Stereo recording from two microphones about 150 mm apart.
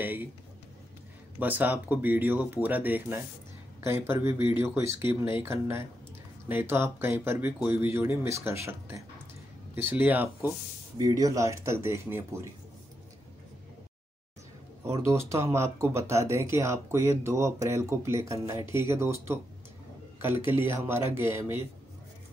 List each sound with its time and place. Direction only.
0.0 s speech: 15° right (ahead or behind)
1.4 s speech: 10° right (ahead or behind)
11.0 s speech: 25° right (ahead or behind)
15.0 s speech: 20° right (ahead or behind)